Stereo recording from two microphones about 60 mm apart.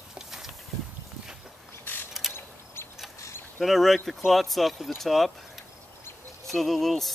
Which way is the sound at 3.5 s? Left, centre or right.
Centre.